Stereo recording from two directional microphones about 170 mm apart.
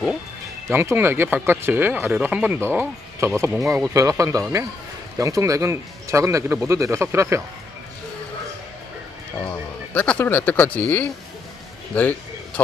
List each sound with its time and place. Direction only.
0.7 s speech: 15° right (ahead or behind)
9.4 s a man's voice: 10° left (ahead or behind)